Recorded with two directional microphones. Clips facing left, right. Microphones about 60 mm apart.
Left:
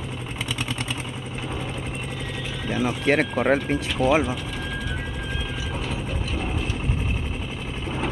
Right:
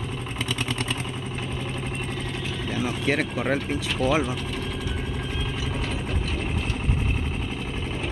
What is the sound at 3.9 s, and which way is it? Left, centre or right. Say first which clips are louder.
Speech: left 3 dB; left.